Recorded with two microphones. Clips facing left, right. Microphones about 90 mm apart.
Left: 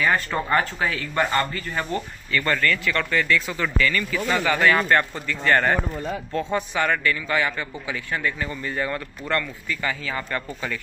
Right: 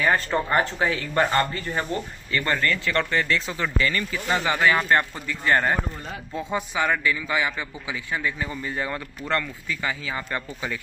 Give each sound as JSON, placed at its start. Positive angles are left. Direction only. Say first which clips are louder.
{"t": 0.0, "sound": "a man's voice", "louder": "even", "side_deg": -25}